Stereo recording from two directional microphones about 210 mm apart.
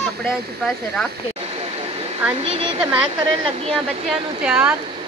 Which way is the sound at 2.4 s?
25° right (ahead or behind).